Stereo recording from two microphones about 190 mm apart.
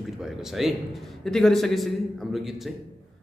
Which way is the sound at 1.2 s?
Centre (ahead or behind).